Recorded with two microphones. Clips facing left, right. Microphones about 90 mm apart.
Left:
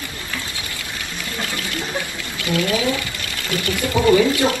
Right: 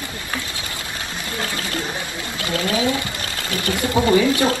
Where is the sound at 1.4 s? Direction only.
35° right (ahead or behind).